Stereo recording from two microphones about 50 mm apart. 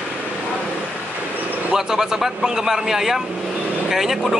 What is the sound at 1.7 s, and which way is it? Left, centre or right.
A man's voice, centre.